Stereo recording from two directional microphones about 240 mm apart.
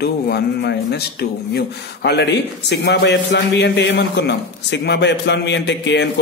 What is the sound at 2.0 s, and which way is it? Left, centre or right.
A man's voice, left.